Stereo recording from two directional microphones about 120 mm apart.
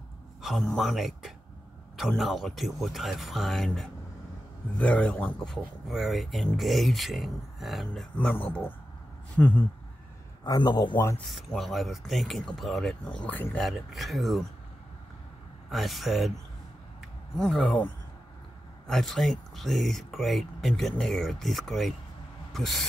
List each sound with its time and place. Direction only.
0.4 s speech: centre (ahead or behind)
5.5 s speech: centre (ahead or behind)
8.3 s speech: 15° left (ahead or behind)
10.4 s speech: 35° left (ahead or behind)
11.2 s speech: centre (ahead or behind)
13.6 s speech: centre (ahead or behind)
15.7 s speech: centre (ahead or behind)
17.4 s speech: 5° left (ahead or behind)
18.9 s speech: centre (ahead or behind)
22.5 s owl: centre (ahead or behind)